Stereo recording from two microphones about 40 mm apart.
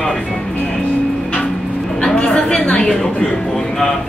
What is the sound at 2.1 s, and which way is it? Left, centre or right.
A woman's voice, left.